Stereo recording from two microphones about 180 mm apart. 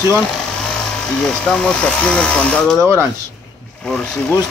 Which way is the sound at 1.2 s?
5° left (ahead or behind).